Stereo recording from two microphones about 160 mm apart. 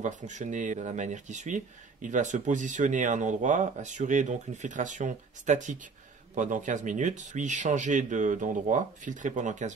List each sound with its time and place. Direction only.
0.0 s speech: 50° right (ahead or behind)